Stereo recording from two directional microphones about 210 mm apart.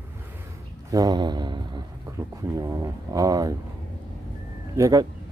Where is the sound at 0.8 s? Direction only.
15° right (ahead or behind).